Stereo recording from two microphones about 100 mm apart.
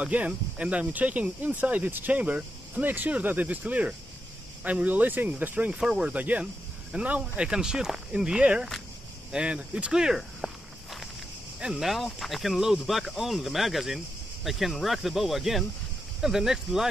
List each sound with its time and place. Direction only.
0.0 s speech: 15° right (ahead or behind)
9.3 s walk: 10° right (ahead or behind)
11.6 s speech: 5° right (ahead or behind)